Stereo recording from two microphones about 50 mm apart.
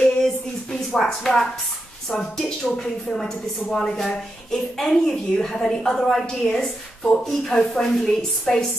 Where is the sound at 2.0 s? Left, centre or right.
Centre.